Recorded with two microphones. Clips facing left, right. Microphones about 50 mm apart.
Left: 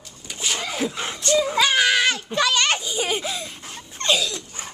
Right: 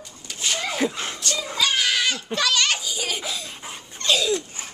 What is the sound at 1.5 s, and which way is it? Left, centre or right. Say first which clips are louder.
Goat: even; left.